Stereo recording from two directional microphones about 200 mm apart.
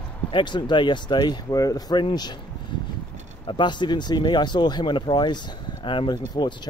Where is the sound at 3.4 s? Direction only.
25° left (ahead or behind).